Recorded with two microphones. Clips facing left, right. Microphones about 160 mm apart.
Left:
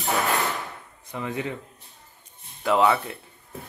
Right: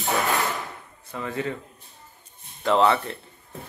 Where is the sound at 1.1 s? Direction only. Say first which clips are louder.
Right 1 dB; 15° left (ahead or behind).